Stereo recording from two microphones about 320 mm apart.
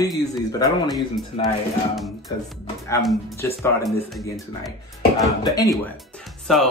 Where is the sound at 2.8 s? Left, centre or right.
Centre.